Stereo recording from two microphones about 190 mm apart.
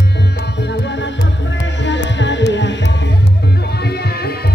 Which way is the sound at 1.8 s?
70° left (ahead or behind).